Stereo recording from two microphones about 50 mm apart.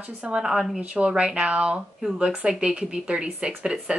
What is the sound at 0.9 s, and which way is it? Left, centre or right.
A woman's voice, centre.